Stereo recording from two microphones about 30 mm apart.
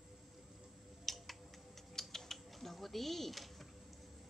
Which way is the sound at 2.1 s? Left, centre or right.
Centre.